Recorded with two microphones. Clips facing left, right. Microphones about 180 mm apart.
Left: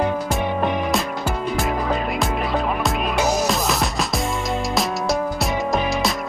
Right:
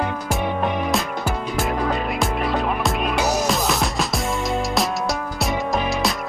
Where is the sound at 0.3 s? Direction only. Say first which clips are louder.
Left 1 dB; centre (ahead or behind).